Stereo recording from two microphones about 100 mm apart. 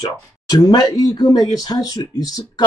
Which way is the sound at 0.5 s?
45° left (ahead or behind).